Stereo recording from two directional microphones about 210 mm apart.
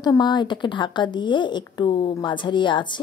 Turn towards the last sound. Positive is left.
turn(degrees=20)  # may be behind; listen again after turning